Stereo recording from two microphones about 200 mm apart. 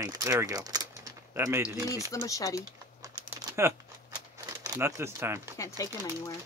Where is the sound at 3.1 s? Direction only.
15° right (ahead or behind).